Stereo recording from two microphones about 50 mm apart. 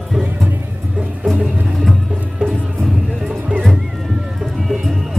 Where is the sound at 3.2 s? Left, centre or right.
Centre.